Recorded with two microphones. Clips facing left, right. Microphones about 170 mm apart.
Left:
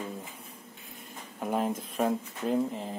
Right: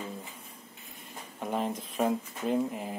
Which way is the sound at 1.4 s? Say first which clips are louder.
Left 2 dB; 5° left (ahead or behind).